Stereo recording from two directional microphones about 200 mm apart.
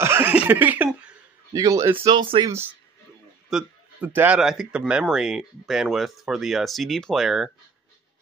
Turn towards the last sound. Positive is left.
turn(degrees=0)  # may be behind; listen again after turning